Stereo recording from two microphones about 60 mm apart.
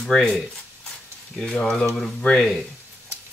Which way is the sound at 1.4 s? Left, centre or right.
Centre.